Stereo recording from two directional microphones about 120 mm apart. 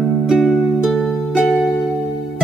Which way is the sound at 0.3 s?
Centre (ahead or behind).